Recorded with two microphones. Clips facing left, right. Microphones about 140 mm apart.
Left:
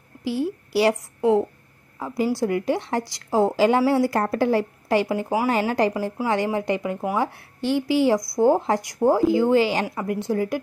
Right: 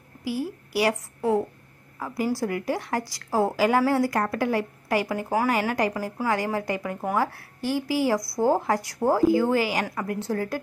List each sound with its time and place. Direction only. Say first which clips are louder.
0.2 s a woman's voice: left 4 dB; 25° left (ahead or behind)